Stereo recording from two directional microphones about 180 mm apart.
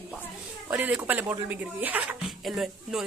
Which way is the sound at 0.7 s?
10° right (ahead or behind).